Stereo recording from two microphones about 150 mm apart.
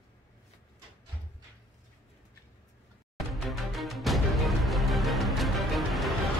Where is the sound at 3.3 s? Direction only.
Centre (ahead or behind).